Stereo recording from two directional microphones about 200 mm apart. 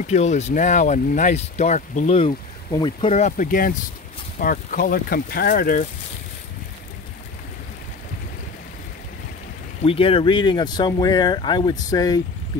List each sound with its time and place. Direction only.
0.0 s speech: 35° left (ahead or behind)
9.8 s speech: 25° left (ahead or behind)